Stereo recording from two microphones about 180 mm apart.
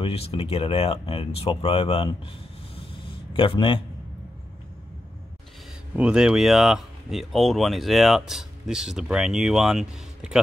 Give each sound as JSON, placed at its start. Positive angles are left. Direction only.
{"t": 0.0, "sound": "speech", "side_deg": 35}
{"t": 2.7, "sound": "a sound", "side_deg": 30}
{"t": 5.9, "sound": "speech", "side_deg": -5}